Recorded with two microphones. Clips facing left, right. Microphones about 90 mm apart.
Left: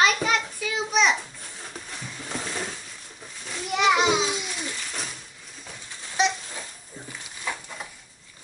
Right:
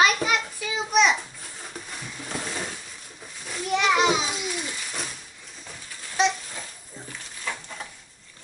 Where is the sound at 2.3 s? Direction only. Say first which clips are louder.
Even; 5° right (ahead or behind).